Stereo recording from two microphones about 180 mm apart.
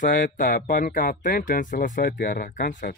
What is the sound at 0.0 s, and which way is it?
Speech, 50° left (ahead or behind).